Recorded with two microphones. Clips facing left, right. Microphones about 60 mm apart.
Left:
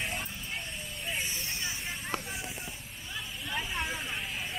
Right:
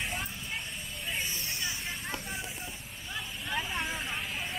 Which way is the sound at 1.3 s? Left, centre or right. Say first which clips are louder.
Even; left.